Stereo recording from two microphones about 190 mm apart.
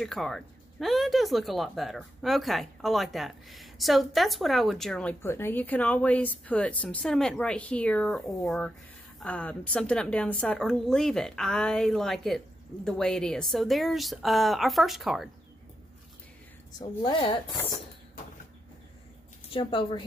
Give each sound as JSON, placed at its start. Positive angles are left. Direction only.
{"t": 0.0, "sound": "speech", "side_deg": 0}
{"t": 16.7, "sound": "a woman's voice", "side_deg": 25}
{"t": 19.5, "sound": "a woman's voice", "side_deg": 25}